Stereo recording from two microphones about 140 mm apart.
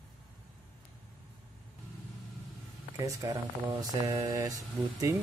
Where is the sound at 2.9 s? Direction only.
25° right (ahead or behind).